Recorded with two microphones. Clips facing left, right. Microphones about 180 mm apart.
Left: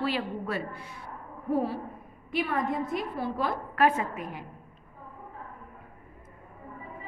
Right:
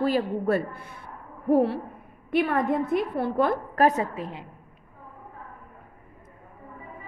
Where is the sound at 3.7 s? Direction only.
40° right (ahead or behind).